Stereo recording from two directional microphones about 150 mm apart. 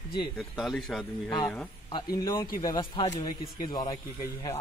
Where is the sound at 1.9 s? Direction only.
25° left (ahead or behind).